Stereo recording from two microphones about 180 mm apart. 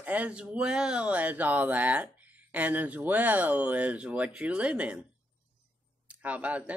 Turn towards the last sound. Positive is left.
turn(degrees=-10)  # may be behind; listen again after turning